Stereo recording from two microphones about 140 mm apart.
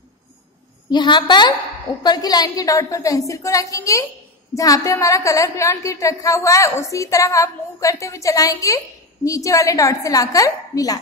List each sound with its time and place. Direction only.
0.8 s a woman's voice: 35° left (ahead or behind)